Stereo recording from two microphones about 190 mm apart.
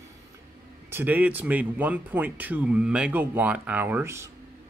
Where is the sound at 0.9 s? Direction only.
10° right (ahead or behind).